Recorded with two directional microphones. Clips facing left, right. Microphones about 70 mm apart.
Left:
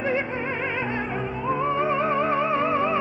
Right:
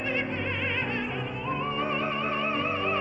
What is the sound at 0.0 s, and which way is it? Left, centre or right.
Opera, left.